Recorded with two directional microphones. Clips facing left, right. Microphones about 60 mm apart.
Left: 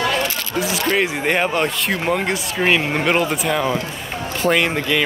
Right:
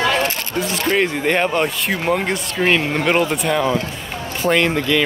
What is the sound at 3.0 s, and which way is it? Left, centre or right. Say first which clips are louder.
Speech: right 2 dB; centre.